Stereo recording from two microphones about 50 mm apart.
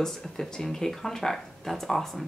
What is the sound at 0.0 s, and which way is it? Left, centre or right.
Speech, centre.